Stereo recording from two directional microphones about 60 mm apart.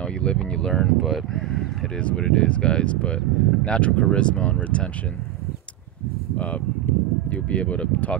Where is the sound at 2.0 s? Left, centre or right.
Centre.